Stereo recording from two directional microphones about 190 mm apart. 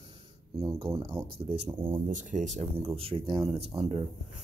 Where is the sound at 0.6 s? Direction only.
20° right (ahead or behind).